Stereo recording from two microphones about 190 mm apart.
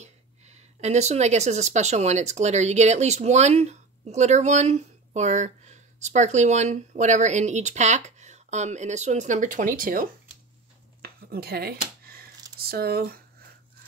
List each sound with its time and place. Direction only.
0.0 s speech: 35° right (ahead or behind)
11.0 s a sound: 55° right (ahead or behind)
12.5 s speech: 55° right (ahead or behind)